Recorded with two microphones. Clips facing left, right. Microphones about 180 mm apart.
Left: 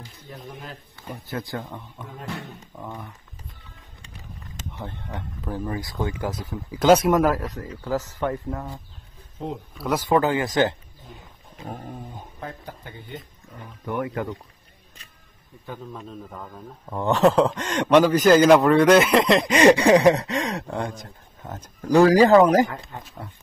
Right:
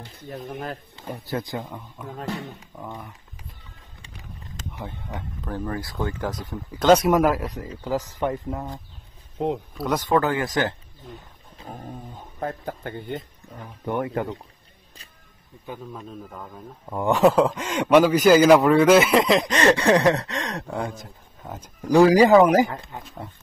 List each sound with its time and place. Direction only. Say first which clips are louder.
0.0 s speech: right 5 dB; 60° right (ahead or behind)
1.4 s speech: right 1 dB; 20° right (ahead or behind)
1.7 s speech: right 2 dB; 5° right (ahead or behind)
4.7 s speech: even; 5° right (ahead or behind)
9.4 s speech: right 6 dB; 70° right (ahead or behind)
9.8 s speech: even; 5° left (ahead or behind)
10.1 s speech: left 2 dB; 20° left (ahead or behind)
11.7 s dog: even; 10° left (ahead or behind)
12.4 s speech: right 9 dB; 50° right (ahead or behind)
13.8 s speech: right 2 dB; 30° right (ahead or behind)
15.5 s speech: even; 20° right (ahead or behind)
15.9 s speech: even; 5° right (ahead or behind)
19.5 s speech: left 5 dB; 15° left (ahead or behind); by 23.1 s centre (ahead or behind)